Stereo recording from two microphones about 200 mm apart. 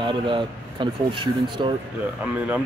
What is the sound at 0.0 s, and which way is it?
Speech, 25° right (ahead or behind).